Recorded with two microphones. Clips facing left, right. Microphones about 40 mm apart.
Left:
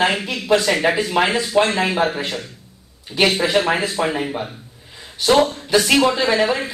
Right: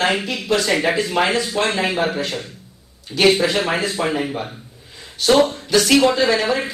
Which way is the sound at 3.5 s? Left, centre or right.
Centre.